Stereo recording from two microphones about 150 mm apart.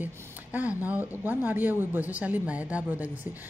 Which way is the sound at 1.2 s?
10° right (ahead or behind).